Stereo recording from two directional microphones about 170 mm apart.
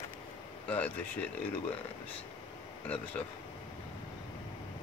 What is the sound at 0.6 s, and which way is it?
Speech, 10° left (ahead or behind).